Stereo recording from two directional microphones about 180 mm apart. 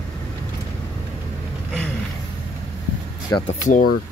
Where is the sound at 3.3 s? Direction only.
20° left (ahead or behind).